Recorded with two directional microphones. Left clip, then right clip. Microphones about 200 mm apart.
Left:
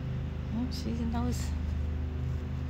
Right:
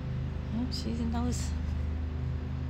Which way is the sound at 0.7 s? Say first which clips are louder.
Right 1 dB; centre (ahead or behind).